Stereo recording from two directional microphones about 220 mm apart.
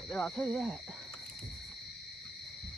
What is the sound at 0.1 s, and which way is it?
Speech, centre (ahead or behind).